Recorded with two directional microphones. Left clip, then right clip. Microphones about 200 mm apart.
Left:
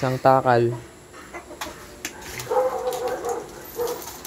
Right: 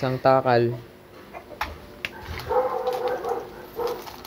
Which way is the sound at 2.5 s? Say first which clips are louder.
Left 1 dB; 45° right (ahead or behind).